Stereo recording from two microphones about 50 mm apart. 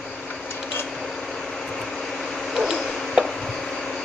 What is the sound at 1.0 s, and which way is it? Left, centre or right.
Vehicle, centre.